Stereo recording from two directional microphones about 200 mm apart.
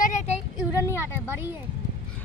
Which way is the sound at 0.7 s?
15° left (ahead or behind).